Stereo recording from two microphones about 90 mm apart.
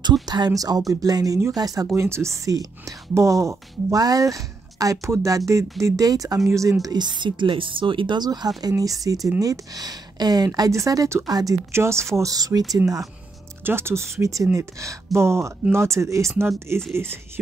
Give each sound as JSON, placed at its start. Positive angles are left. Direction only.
{"t": 0.5, "sound": "speech", "side_deg": -45}
{"t": 8.2, "sound": "speech", "side_deg": -50}
{"t": 11.2, "sound": "speech", "side_deg": -45}
{"t": 11.7, "sound": "speech", "side_deg": -30}
{"t": 13.7, "sound": "speech", "side_deg": -25}